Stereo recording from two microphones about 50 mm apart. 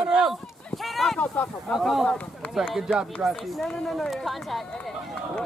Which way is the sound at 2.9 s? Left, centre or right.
Centre.